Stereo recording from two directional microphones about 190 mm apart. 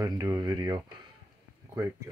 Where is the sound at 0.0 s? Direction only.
20° right (ahead or behind).